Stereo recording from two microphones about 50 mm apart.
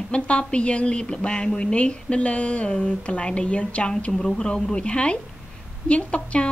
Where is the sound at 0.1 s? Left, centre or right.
Left.